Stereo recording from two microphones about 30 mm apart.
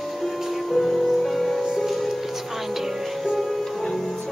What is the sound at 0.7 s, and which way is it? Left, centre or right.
Music, centre.